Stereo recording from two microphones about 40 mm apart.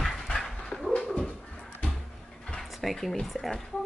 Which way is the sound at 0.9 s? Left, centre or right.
Left.